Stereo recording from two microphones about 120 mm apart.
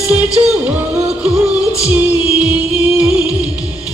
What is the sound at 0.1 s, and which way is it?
Music, 10° right (ahead or behind).